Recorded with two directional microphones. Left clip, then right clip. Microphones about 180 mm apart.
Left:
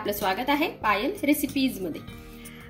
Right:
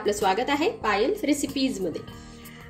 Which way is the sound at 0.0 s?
30° left (ahead or behind).